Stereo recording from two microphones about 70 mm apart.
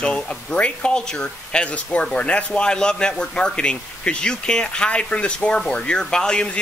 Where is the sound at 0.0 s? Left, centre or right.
Centre.